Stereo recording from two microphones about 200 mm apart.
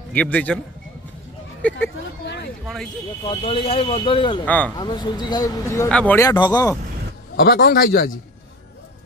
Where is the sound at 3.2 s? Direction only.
25° left (ahead or behind).